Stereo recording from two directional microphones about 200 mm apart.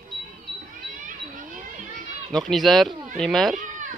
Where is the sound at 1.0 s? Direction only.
40° right (ahead or behind).